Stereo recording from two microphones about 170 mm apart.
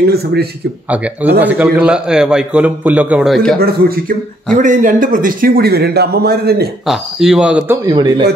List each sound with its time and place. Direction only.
0.1 s speech: 70° right (ahead or behind)
0.8 s a man's voice: 10° right (ahead or behind)
3.5 s speech: 65° right (ahead or behind)
4.6 s speech: 50° right (ahead or behind); by 6.7 s 70° right (ahead or behind)
6.9 s speech: centre (ahead or behind)
7.9 s speech: 25° right (ahead or behind)